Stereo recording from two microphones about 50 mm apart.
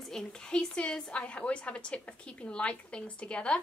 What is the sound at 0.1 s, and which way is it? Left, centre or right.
A woman's voice, centre.